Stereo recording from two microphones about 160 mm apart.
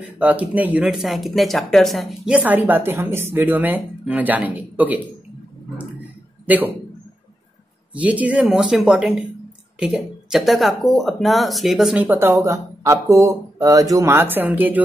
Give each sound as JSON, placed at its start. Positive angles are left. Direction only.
{"t": 0.2, "sound": "speech", "side_deg": -10}
{"t": 6.4, "sound": "speech", "side_deg": -10}
{"t": 7.9, "sound": "speech", "side_deg": -10}